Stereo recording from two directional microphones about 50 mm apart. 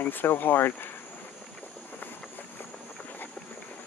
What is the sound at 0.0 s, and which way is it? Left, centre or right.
Speech, left.